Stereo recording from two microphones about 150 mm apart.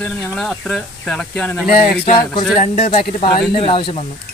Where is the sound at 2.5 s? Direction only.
55° left (ahead or behind).